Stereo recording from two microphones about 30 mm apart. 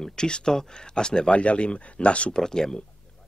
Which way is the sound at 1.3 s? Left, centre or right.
Left.